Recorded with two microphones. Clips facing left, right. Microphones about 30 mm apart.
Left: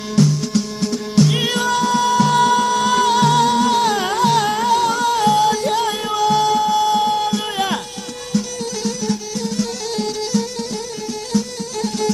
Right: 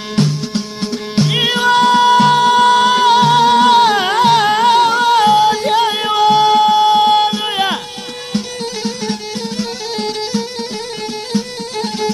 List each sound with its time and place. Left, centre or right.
0.1 s music: right
2.6 s music: right
7.3 s music: right